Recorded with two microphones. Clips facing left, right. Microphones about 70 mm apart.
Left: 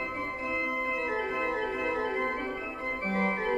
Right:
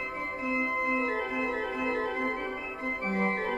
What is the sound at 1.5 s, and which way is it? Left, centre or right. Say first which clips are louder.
Organ: even; centre.